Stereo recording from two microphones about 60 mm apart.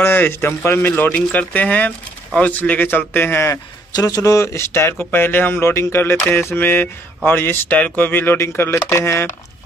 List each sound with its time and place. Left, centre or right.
0.0 s speech: left
1.5 s speech: left
4.0 s speech: left
5.7 s speech: left
6.5 s speech: left
8.4 s speech: left